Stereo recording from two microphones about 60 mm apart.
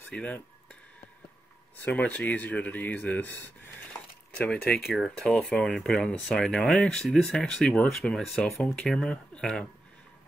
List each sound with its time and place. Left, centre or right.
0.1 s speech: left
1.9 s speech: left
3.9 s a sound: left
4.7 s speech: centre
5.1 s speech: centre